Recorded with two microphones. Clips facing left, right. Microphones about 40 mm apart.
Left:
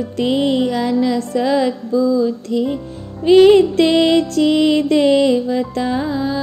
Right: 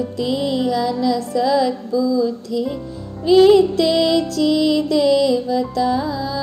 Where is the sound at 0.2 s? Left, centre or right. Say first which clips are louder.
Left 5 dB; left.